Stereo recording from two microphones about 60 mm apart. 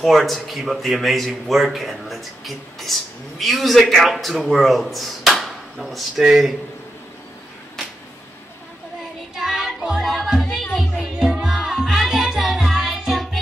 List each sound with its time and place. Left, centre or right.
0.0 s a man's voice: centre
9.3 s child singing: centre
10.0 s music: centre